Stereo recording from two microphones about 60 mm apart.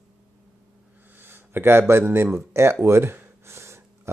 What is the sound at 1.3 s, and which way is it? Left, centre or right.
Speech, right.